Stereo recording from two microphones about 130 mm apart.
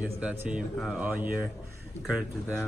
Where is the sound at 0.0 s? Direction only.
10° right (ahead or behind).